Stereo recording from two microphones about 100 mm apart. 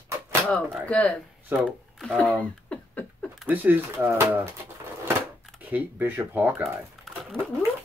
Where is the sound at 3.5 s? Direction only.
20° right (ahead or behind).